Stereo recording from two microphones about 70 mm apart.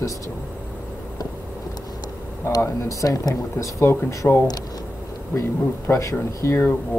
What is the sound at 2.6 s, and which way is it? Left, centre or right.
Speech, left.